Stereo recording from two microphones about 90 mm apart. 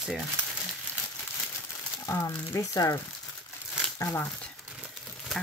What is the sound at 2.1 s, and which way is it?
Speech, 35° left (ahead or behind).